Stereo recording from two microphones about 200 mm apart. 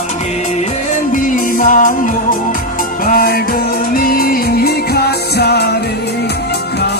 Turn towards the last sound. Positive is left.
turn(degrees=55)  # may be behind; listen again after turning